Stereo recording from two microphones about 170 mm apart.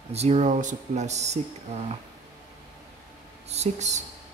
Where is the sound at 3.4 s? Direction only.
40° right (ahead or behind).